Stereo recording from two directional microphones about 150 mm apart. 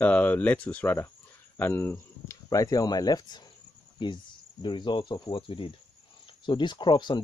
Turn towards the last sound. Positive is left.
turn(degrees=30)  # may be behind; listen again after turning